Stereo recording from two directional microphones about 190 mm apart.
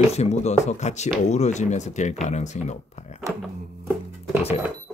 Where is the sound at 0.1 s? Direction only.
35° left (ahead or behind).